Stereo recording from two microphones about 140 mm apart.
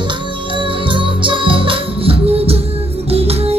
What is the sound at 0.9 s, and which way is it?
Music, 35° right (ahead or behind).